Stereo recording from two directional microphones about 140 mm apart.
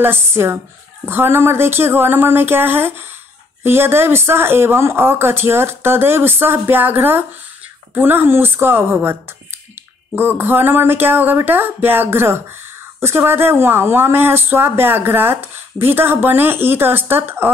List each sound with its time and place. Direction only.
0.0 s speech: 15° right (ahead or behind)